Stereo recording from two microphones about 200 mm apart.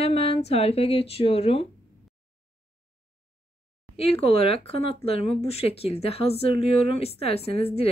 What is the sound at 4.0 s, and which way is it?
Speech, 30° left (ahead or behind).